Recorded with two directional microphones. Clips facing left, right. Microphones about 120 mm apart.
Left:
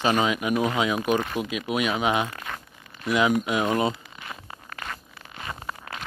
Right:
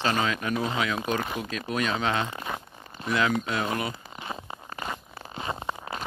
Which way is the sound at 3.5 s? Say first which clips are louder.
Left 5 dB; 20° left (ahead or behind).